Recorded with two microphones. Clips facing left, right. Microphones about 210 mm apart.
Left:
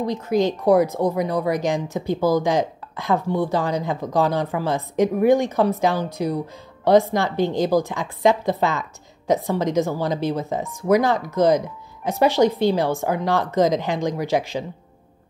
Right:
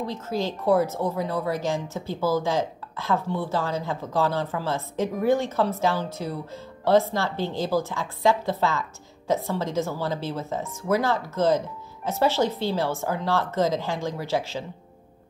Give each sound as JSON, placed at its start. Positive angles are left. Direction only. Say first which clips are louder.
{"t": 0.0, "sound": "speech", "louder": "left 7 dB", "side_deg": 15}